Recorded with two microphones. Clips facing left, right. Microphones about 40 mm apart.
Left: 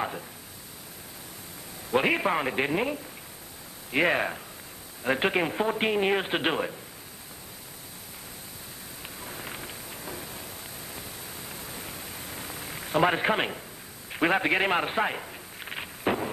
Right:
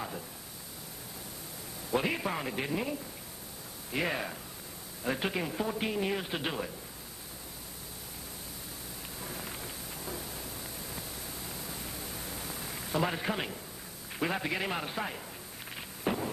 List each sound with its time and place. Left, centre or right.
2.0 s a man's voice: left
9.2 s vehicle: left
11.0 s pink noise: left
14.1 s a sound: left